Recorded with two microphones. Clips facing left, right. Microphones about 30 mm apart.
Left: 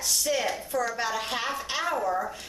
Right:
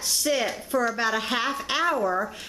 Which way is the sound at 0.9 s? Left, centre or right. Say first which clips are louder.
Right 4 dB; centre.